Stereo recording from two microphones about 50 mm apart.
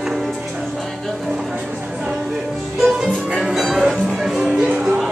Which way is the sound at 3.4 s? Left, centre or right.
Centre.